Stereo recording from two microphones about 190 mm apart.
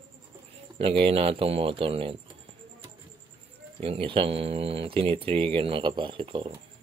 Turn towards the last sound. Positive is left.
turn(degrees=-25)  # may be behind; listen again after turning